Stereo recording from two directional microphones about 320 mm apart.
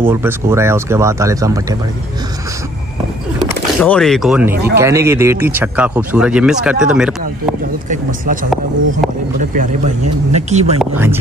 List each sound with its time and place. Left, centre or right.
0.0 s speech: centre
3.3 s speech: centre
7.9 s speech: right
10.3 s speech: right
10.8 s speech: centre